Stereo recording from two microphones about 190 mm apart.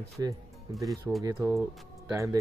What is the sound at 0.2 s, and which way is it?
Speech, 15° right (ahead or behind).